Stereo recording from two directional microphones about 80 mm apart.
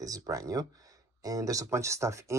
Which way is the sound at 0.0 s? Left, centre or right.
Right.